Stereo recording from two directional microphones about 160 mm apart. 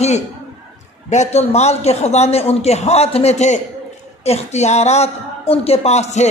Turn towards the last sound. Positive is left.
turn(degrees=45)  # may be behind; listen again after turning